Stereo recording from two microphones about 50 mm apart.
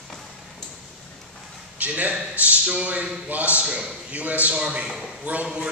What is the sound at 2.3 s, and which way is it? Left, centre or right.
A man's voice, right.